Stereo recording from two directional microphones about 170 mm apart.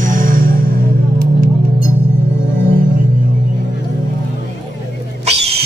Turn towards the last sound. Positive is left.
turn(degrees=-35)  # may be behind; listen again after turning